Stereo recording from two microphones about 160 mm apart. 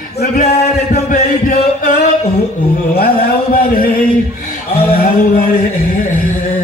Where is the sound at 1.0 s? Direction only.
55° left (ahead or behind).